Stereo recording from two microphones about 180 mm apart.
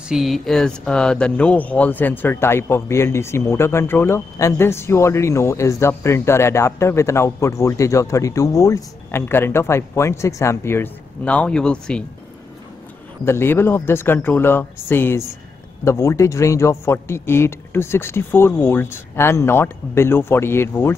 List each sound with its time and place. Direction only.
0.1 s speech: centre (ahead or behind)
13.2 s speech: 15° left (ahead or behind)